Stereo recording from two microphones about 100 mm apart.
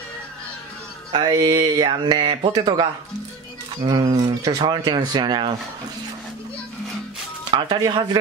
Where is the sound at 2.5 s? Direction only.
40° right (ahead or behind).